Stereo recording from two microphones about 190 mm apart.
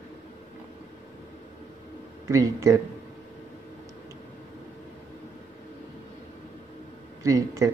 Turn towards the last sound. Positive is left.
turn(degrees=-15)  # may be behind; listen again after turning